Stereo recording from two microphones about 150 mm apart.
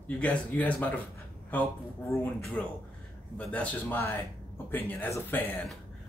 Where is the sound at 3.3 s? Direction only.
10° left (ahead or behind).